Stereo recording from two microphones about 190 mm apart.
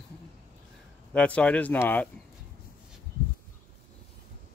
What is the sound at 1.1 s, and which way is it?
Speech, 5° left (ahead or behind).